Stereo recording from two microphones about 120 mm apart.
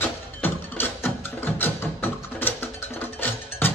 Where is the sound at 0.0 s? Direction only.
15° left (ahead or behind).